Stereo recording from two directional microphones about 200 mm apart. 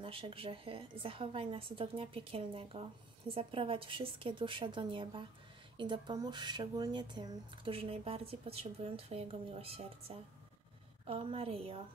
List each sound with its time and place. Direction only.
0.0 s speech: 25° right (ahead or behind)